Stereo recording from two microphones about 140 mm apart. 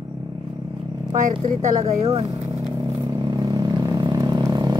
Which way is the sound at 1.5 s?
60° right (ahead or behind).